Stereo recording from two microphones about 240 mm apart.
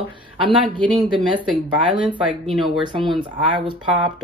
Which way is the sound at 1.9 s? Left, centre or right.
Right.